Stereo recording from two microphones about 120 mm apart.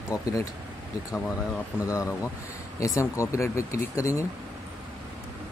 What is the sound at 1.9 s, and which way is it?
Speech, 25° left (ahead or behind).